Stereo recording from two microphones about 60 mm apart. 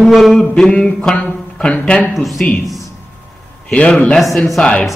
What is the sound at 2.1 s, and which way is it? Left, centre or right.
Speech, centre.